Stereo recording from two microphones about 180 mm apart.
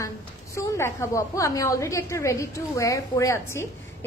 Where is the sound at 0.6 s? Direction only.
15° left (ahead or behind).